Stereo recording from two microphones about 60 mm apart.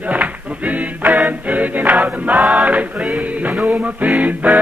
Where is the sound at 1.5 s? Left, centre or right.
Right.